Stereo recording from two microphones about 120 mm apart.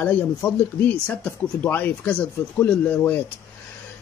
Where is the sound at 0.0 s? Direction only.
15° left (ahead or behind).